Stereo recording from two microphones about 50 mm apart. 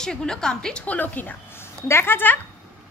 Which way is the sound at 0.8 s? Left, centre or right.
Left.